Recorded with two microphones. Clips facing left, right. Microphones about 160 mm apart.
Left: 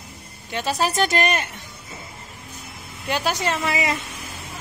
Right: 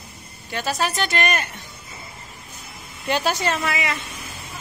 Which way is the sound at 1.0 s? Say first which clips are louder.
Left 3 dB; 40° left (ahead or behind).